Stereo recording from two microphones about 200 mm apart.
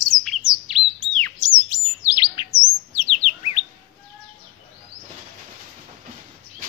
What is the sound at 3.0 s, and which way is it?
Bird, 30° left (ahead or behind).